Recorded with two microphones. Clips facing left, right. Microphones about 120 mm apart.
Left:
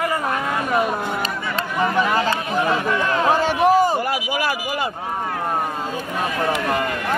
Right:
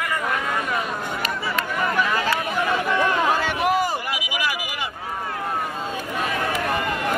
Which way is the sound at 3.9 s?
40° left (ahead or behind).